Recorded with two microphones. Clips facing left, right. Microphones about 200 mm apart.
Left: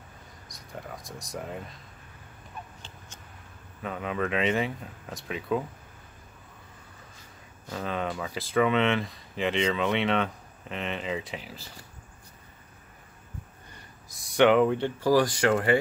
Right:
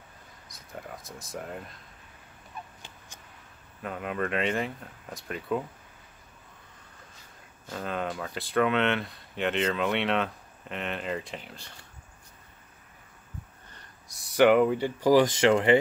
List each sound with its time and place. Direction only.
0.5 s a sound: centre (ahead or behind)
1.2 s speech: centre (ahead or behind)
3.8 s speech: centre (ahead or behind)
7.7 s speech: centre (ahead or behind)
14.1 s speech: 5° right (ahead or behind)
15.0 s speech: 20° right (ahead or behind)